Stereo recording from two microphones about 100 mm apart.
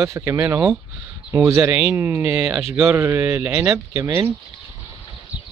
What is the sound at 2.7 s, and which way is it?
Speech, 25° right (ahead or behind).